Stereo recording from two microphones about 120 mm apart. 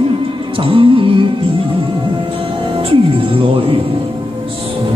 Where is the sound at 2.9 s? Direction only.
50° right (ahead or behind).